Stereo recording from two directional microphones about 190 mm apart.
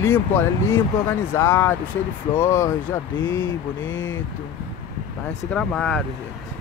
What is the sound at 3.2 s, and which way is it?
Speech, 85° left.